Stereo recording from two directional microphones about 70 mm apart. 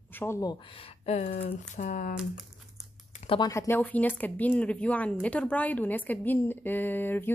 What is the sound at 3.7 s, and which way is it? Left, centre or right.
A woman's voice, left.